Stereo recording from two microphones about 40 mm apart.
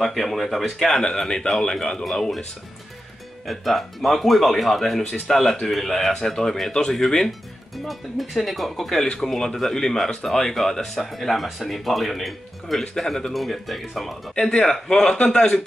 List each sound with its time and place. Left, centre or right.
0.0 s speech: centre
3.4 s speech: centre
6.7 s speech: centre
7.0 s speech: centre
14.4 s speech: centre